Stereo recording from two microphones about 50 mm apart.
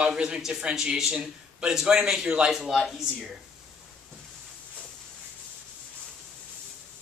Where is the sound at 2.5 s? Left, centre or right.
Centre.